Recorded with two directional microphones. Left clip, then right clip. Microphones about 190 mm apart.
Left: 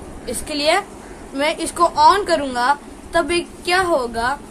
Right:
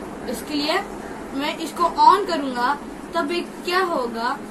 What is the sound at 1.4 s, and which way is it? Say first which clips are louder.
A woman's voice: left 5 dB; 45° left (ahead or behind).